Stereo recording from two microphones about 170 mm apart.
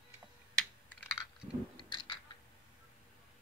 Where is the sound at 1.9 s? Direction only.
25° left (ahead or behind).